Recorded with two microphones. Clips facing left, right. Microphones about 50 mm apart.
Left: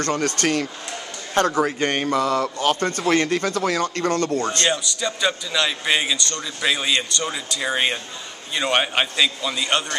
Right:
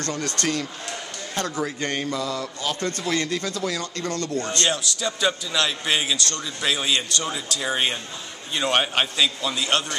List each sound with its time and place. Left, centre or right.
0.0 s speech: left
4.6 s a man's voice: centre